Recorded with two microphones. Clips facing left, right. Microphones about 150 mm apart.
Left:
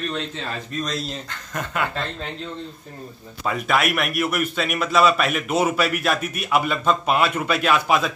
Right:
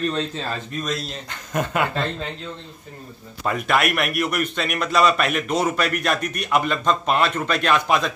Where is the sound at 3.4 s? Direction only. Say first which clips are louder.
Right 1 dB; centre (ahead or behind).